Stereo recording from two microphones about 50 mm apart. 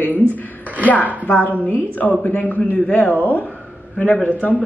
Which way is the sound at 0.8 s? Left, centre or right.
Left.